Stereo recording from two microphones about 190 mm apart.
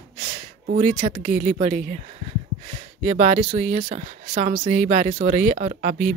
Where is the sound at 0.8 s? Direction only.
40° right (ahead or behind).